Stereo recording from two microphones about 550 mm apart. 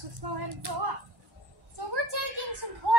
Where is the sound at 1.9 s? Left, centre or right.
Right.